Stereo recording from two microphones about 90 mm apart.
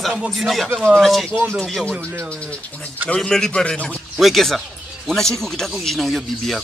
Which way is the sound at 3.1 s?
10° left (ahead or behind).